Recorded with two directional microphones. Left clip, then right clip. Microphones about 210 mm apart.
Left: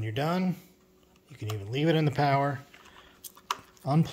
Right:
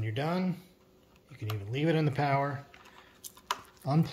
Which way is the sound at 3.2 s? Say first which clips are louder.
Right 1 dB; 5° left (ahead or behind).